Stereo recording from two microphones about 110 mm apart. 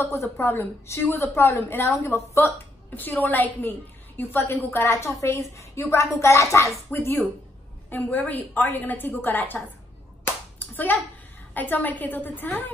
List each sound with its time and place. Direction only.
0.0 s a woman's voice: 25° left (ahead or behind)
10.2 s a sound: 15° left (ahead or behind)
11.5 s a woman's voice: 15° left (ahead or behind)